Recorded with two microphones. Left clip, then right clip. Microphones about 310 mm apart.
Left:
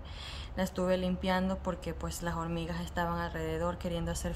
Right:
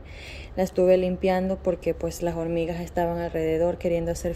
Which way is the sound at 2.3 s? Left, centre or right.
Left.